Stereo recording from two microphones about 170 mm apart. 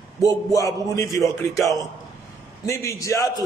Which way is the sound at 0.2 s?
20° left (ahead or behind).